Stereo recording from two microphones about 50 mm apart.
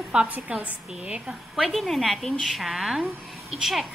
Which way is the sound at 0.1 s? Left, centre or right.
Right.